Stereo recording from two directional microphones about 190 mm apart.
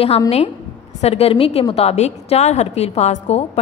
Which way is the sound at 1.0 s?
30° left (ahead or behind).